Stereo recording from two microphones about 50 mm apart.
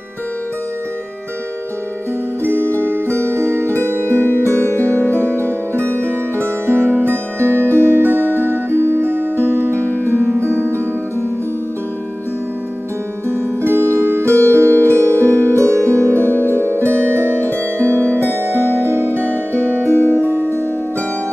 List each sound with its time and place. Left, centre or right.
2.4 s music: right
4.6 s music: left
5.1 s music: right
13.3 s music: right